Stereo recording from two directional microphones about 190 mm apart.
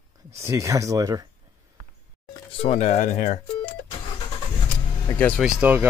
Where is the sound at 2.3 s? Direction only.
30° left (ahead or behind).